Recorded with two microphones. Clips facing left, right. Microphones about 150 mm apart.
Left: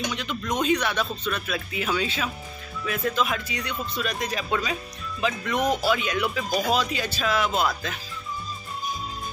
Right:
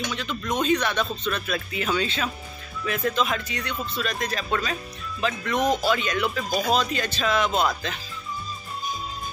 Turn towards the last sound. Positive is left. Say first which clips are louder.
# right 1 dB
turn(degrees=5)  # may be behind; listen again after turning